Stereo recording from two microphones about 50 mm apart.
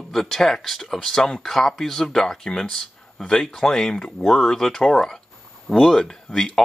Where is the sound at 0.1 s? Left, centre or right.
Centre.